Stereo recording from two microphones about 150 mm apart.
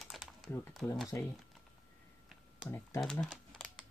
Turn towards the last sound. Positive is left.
turn(degrees=5)  # may be behind; listen again after turning